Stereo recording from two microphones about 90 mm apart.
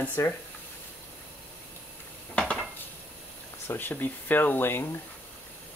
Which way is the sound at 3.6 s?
20° left (ahead or behind).